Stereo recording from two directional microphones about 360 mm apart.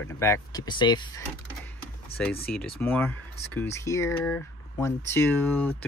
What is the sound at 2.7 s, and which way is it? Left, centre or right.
Speech, centre.